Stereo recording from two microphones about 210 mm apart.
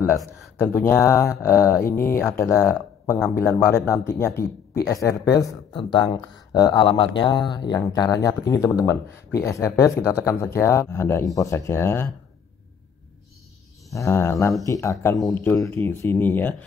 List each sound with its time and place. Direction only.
0.8 s speech: 10° left (ahead or behind)
13.9 s speech: 10° left (ahead or behind)